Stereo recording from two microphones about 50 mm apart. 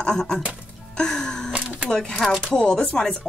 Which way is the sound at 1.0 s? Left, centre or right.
Centre.